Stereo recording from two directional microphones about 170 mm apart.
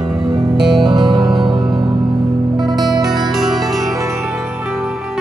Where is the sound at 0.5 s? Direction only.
Centre (ahead or behind).